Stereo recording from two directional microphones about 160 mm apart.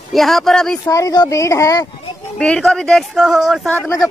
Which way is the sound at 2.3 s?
5° left (ahead or behind).